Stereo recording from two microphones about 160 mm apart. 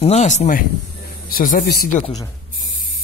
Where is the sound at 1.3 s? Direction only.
65° left (ahead or behind).